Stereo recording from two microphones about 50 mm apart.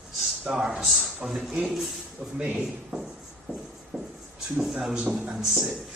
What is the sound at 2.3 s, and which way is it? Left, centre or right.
Speech, centre.